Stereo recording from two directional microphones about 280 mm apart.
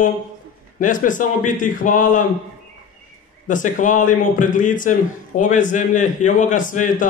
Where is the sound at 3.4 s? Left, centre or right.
Left.